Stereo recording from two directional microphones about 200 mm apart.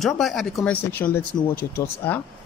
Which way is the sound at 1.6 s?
50° left (ahead or behind).